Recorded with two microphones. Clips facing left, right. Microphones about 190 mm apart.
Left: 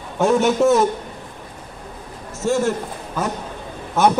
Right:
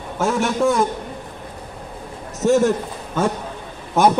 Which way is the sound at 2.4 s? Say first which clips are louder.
Right 4 dB; 20° right (ahead or behind).